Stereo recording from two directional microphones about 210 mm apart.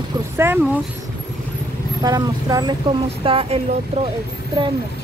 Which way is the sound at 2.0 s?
20° right (ahead or behind).